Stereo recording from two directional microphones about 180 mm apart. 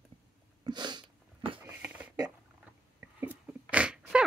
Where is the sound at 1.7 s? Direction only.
10° right (ahead or behind).